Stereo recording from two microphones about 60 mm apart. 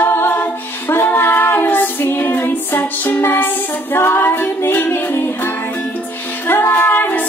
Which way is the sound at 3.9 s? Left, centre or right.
Left.